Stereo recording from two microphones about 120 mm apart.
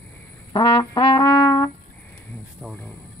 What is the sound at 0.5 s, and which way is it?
Brass instrument, 35° left (ahead or behind).